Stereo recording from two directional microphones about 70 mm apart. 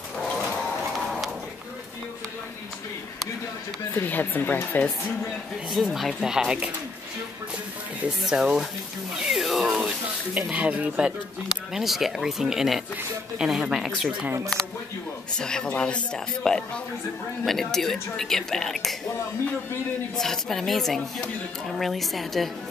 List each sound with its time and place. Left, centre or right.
3.9 s speech: left
5.7 s speech: centre
8.2 s speech: centre
9.1 s a sound: centre
10.5 s speech: centre
15.3 s speech: centre
20.2 s speech: centre